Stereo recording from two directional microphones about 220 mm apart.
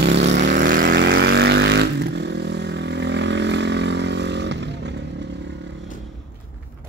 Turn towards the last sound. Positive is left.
turn(degrees=-50)  # may be behind; listen again after turning